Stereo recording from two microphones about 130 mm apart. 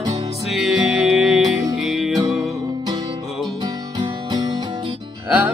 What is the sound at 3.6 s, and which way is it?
Music, 30° right (ahead or behind).